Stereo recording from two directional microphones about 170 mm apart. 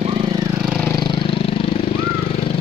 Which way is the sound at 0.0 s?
30° right (ahead or behind).